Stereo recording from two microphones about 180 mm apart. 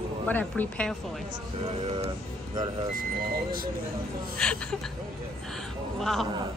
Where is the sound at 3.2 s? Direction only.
55° right (ahead or behind).